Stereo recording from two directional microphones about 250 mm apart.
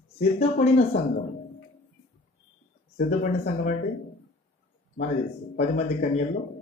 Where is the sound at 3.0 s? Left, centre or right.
Left.